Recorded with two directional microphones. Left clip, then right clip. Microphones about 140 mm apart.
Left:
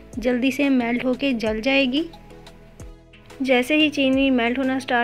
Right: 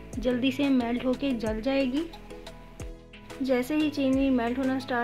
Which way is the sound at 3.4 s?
40° left (ahead or behind).